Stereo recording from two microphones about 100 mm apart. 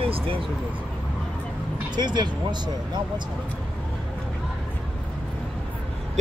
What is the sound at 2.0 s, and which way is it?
Speech, 50° right (ahead or behind).